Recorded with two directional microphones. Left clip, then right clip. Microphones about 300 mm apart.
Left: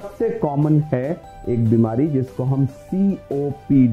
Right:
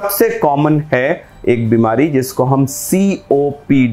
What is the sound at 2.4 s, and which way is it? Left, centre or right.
Speech, centre.